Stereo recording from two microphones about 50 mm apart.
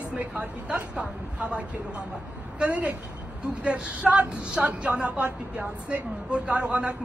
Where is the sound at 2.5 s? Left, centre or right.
Right.